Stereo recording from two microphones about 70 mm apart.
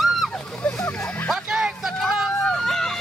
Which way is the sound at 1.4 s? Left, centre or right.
Centre.